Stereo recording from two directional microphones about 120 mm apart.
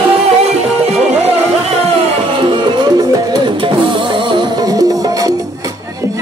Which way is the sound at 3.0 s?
30° right (ahead or behind).